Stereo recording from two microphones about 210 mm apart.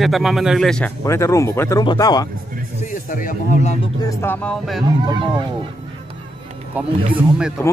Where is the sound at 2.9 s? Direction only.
40° left (ahead or behind).